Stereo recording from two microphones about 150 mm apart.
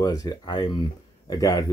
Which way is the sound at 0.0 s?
25° left (ahead or behind).